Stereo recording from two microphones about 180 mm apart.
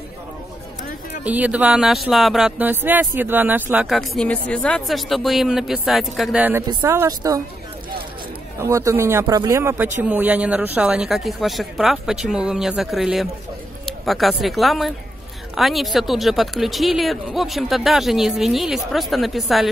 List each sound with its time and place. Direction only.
1.2 s speech: 10° right (ahead or behind)
8.5 s speech: 15° right (ahead or behind); by 19.7 s centre (ahead or behind)